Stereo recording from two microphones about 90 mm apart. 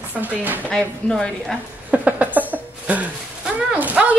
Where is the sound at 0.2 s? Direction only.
20° right (ahead or behind).